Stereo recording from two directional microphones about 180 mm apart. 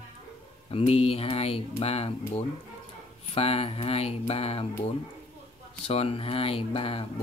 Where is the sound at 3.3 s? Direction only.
35° left (ahead or behind).